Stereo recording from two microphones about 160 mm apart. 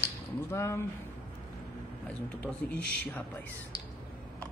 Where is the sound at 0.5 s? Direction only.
15° left (ahead or behind).